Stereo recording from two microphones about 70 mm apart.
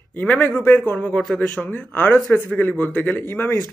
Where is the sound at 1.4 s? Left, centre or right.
Left.